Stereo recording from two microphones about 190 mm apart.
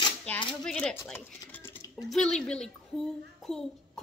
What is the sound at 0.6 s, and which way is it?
Speech, 5° left (ahead or behind).